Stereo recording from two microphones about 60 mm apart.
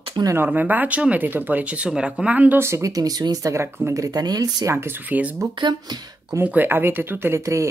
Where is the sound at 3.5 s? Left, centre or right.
Right.